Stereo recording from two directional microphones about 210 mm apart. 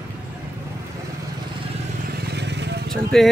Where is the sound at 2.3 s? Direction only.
55° right (ahead or behind).